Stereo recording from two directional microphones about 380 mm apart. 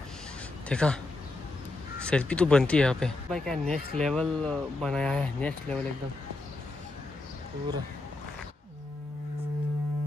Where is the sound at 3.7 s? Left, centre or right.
Centre.